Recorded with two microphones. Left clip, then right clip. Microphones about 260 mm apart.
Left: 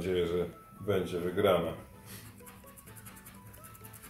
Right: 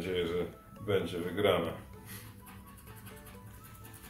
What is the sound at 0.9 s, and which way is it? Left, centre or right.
Speech, left.